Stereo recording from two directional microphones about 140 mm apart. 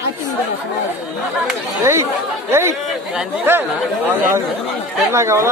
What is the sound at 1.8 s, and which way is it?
Speech, 20° right (ahead or behind).